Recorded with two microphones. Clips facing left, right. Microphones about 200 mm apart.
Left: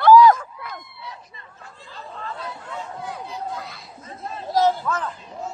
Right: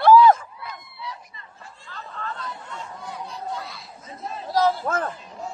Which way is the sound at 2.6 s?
65° left (ahead or behind).